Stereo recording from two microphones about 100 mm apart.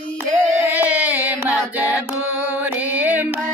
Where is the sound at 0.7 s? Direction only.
20° right (ahead or behind).